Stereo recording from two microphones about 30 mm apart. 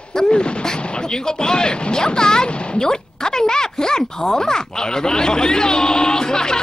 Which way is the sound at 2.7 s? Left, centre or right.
Left.